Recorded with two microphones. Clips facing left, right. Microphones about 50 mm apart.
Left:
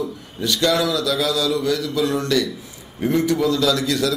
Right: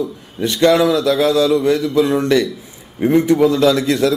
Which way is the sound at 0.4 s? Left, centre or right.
Right.